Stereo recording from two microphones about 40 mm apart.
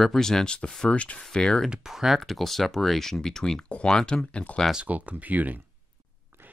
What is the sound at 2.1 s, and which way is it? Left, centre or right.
Speech, centre.